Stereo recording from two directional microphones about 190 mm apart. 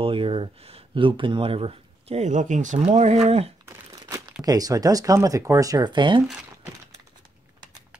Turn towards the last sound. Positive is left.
turn(degrees=-5)  # may be behind; listen again after turning